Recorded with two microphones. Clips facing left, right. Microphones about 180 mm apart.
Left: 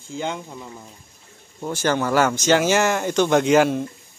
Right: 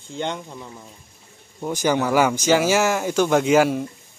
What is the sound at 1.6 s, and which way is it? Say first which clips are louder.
Speech: right 1 dB; 15° right (ahead or behind).